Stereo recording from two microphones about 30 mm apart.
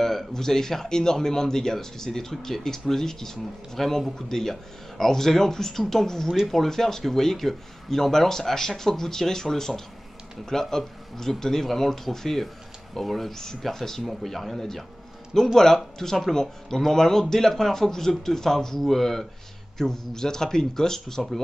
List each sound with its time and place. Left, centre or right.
0.0 s speech: centre